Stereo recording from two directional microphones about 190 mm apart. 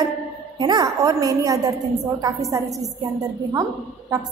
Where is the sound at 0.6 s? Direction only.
20° right (ahead or behind).